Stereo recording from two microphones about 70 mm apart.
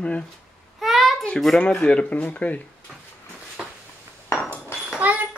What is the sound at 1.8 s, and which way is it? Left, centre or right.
Speech, centre.